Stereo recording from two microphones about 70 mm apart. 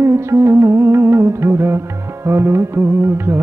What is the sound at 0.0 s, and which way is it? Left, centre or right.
Music, right.